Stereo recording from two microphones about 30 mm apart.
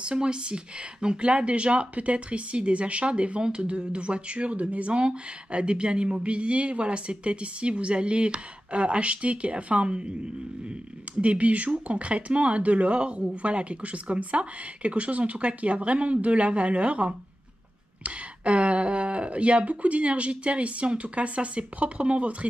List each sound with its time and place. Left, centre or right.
0.0 s speech: right
4.9 s speech: right
9.8 s speech: right
11.1 s speech: right
18.0 s speech: right